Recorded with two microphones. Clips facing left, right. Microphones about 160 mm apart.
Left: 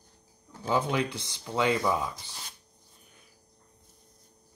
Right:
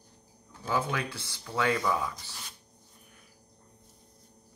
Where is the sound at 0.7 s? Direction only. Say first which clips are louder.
Left 3 dB; 20° left (ahead or behind).